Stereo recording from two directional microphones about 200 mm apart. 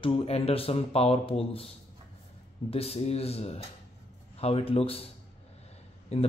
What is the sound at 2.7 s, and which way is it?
Speech, 30° left (ahead or behind).